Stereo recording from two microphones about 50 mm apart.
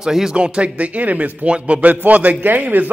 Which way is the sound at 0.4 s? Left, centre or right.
Right.